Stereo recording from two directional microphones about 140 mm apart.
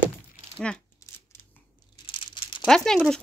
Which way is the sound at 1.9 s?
35° left (ahead or behind).